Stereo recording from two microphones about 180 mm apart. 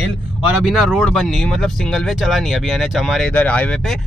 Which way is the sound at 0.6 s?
Centre (ahead or behind).